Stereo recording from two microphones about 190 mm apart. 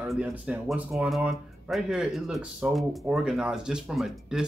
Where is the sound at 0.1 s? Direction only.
10° right (ahead or behind).